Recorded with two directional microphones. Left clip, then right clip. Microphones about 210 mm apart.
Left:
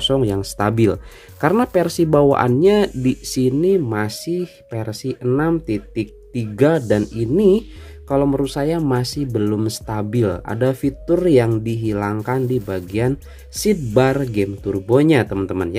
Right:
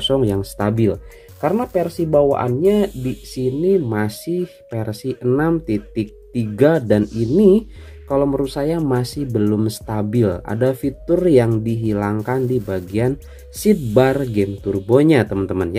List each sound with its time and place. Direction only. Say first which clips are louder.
0.0 s speech: even; 5° left (ahead or behind)
0.6 s speech: left 3 dB; 15° left (ahead or behind)
3.4 s speech: even; 20° left (ahead or behind)
3.9 s speech: even; 5° left (ahead or behind)